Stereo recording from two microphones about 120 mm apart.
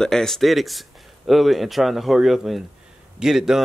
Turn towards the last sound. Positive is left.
turn(degrees=-5)  # may be behind; listen again after turning